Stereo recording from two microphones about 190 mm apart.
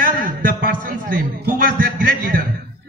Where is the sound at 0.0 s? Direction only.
50° right (ahead or behind).